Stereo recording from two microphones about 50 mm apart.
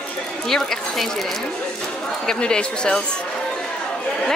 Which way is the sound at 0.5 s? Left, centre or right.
Centre.